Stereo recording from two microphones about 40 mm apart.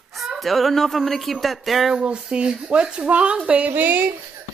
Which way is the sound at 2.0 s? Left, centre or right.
Right.